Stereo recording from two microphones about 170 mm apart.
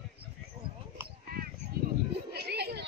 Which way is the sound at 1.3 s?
65° right (ahead or behind).